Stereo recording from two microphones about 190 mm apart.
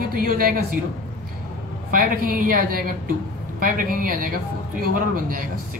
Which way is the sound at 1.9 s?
45° right (ahead or behind).